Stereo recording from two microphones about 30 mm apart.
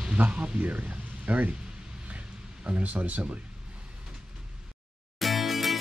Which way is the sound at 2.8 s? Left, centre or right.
Right.